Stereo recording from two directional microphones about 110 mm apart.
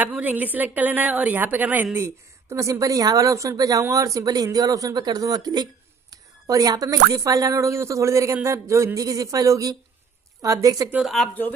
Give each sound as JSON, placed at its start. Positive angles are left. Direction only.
{"t": 0.0, "sound": "a woman's voice", "side_deg": -15}
{"t": 11.0, "sound": "speech", "side_deg": 0}